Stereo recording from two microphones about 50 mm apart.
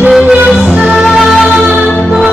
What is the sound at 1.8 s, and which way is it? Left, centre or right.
Music, left.